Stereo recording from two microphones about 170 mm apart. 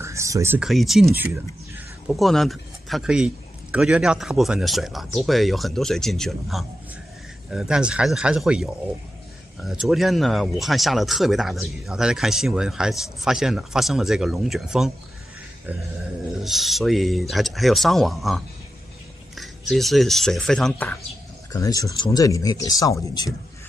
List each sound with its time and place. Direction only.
0.0 s a sound: 15° right (ahead or behind)
0.6 s speech: centre (ahead or behind)
2.0 s speech: centre (ahead or behind)
16.3 s speech: centre (ahead or behind)
21.5 s speech: 20° left (ahead or behind)